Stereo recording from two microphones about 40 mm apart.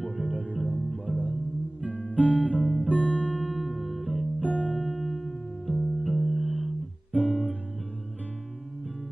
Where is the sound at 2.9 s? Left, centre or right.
Left.